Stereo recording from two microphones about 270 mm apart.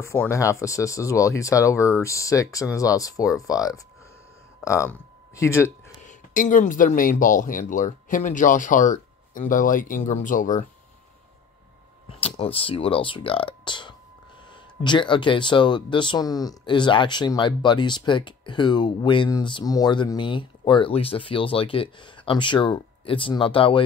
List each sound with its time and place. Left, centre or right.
0.0 s speech: centre
6.0 s speech: left
12.2 s speech: left